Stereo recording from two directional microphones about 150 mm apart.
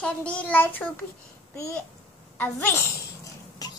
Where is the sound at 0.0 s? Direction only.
10° left (ahead or behind).